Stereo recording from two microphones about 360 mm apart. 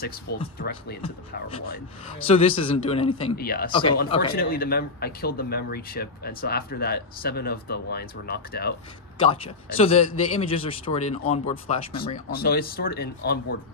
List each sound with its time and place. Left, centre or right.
0.0 s a man's voice: left
4.0 s a man's voice: centre
9.2 s a man's voice: centre